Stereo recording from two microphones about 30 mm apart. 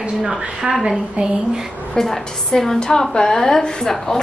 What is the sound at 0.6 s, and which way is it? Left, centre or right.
Speech, right.